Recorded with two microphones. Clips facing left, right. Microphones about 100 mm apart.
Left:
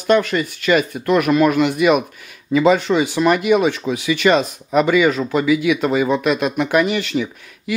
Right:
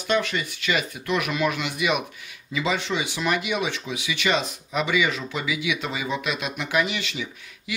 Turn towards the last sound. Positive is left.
turn(degrees=50)  # may be behind; listen again after turning